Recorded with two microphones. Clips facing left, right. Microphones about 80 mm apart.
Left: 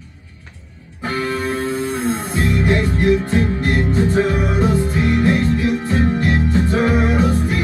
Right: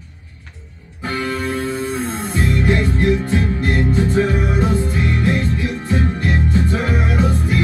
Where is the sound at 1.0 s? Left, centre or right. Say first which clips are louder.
Left 1 dB; centre.